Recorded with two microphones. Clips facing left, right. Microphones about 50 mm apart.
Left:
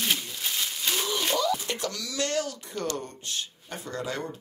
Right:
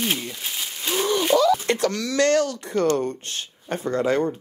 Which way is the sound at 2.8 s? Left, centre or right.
Right.